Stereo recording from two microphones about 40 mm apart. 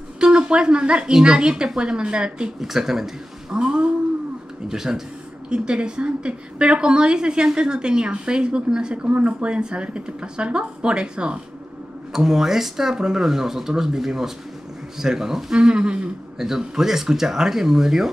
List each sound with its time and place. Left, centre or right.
0.2 s a woman's voice: right
2.6 s speech: centre
3.5 s cat: right
4.6 s speech: centre
5.5 s a woman's voice: right
12.1 s a woman's voice: centre
16.3 s speech: centre